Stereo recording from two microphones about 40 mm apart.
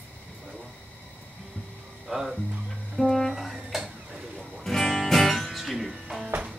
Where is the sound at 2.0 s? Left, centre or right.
Centre.